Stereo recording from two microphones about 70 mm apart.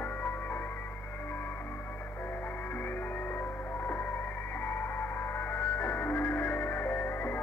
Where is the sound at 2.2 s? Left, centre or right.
Left.